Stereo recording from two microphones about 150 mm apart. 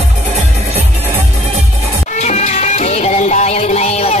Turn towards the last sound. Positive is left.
turn(degrees=45)  # may be behind; listen again after turning